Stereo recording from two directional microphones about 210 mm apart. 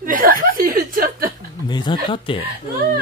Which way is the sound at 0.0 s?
40° right (ahead or behind).